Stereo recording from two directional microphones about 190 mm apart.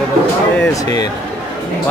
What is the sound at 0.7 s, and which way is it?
Speech, 15° left (ahead or behind).